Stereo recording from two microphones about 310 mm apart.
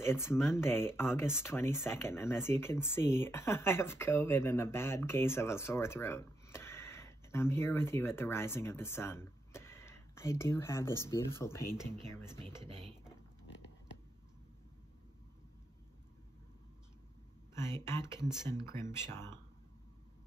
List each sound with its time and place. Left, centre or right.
0.0 s speech: centre
12.4 s speech: centre
17.6 s speech: centre